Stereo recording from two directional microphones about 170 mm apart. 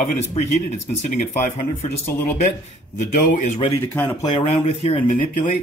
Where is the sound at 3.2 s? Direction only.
50° left (ahead or behind).